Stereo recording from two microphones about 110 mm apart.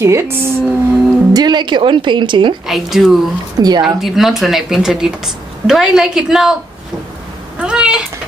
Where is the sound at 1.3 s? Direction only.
40° right (ahead or behind).